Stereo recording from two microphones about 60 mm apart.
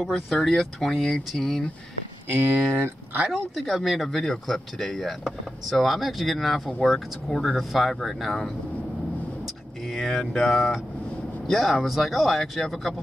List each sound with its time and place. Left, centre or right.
0.3 s speech: centre
2.3 s speech: right
3.3 s speech: centre
9.8 s speech: centre